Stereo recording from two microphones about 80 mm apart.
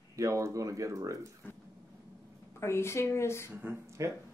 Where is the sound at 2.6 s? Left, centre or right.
Left.